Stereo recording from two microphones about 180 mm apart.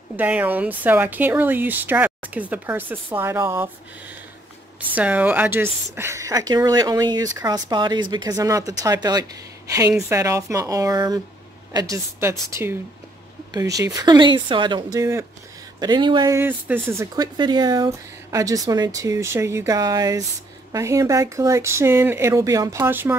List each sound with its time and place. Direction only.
0.1 s speech: 10° right (ahead or behind)
4.7 s speech: 10° right (ahead or behind)